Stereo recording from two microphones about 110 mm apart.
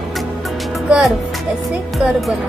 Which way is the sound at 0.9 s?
Centre (ahead or behind).